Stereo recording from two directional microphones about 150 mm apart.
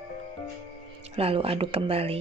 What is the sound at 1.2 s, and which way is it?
A woman's voice, 40° right (ahead or behind).